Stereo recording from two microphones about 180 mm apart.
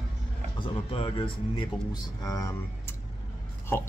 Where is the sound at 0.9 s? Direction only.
30° left (ahead or behind).